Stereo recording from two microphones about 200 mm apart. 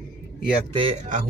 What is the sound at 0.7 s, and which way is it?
Speech, 30° right (ahead or behind).